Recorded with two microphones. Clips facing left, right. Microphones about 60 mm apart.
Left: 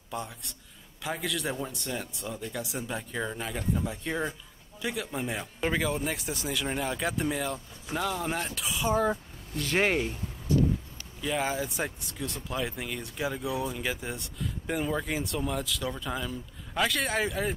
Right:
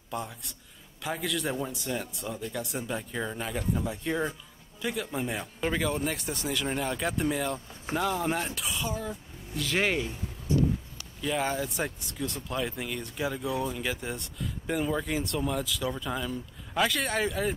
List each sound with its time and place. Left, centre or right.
0.1 s speech: centre
8.9 s speech: left
9.6 s speech: centre
9.8 s speech: left
10.5 s horse: right
11.1 s speech: centre